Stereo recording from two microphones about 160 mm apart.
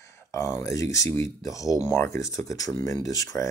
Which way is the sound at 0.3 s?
20° left (ahead or behind).